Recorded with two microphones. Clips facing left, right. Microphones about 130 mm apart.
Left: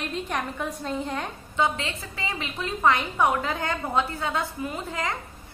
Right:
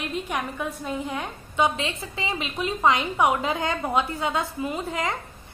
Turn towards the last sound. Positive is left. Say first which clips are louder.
# right 3 dB
turn(degrees=-20)  # may be behind; listen again after turning